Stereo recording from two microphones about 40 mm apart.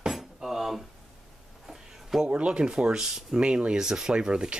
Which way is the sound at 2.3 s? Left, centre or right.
Right.